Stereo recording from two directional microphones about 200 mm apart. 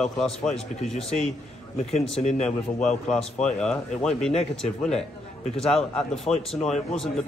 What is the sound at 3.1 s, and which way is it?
Speech, 30° left (ahead or behind).